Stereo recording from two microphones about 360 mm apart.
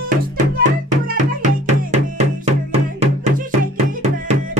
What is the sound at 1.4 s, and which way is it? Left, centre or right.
Music, centre.